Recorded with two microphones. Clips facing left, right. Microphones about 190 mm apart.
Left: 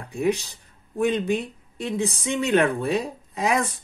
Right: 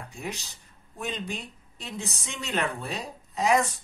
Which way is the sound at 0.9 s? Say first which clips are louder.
Left 12 dB; 55° left (ahead or behind).